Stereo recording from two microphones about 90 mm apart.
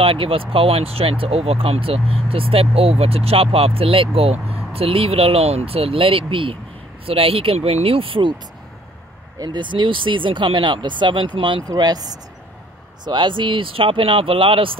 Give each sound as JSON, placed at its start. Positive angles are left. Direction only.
{"t": 0.0, "sound": "speech", "side_deg": -90}
{"t": 9.4, "sound": "speech", "side_deg": -55}
{"t": 11.6, "sound": "speech", "side_deg": -50}